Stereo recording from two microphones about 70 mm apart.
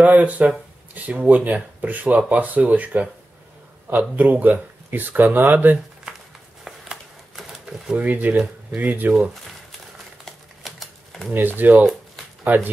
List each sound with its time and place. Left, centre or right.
0.0 s speech: right
4.2 s speech: right
6.6 s a sound: centre
8.0 s speech: right
10.2 s typewriter: centre
11.3 s speech: right